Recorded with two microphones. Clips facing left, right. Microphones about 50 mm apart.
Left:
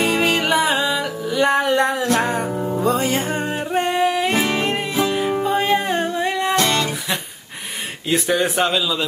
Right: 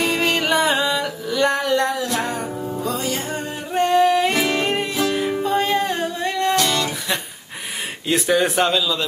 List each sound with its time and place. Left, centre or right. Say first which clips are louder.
0.0 s music: left 2 dB; centre; by 3.5 s left
3.7 s music: right 4 dB; centre
6.5 s music: left 2 dB; left
8.1 s speech: right 1 dB; centre